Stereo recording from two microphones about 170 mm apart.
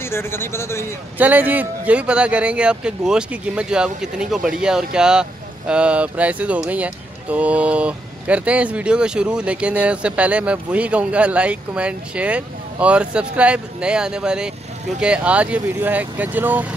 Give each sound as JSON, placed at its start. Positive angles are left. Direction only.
{"t": 0.0, "sound": "speech", "side_deg": 15}
{"t": 1.1, "sound": "speech", "side_deg": -10}